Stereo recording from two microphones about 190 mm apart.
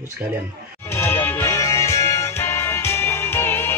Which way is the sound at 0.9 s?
10° left (ahead or behind).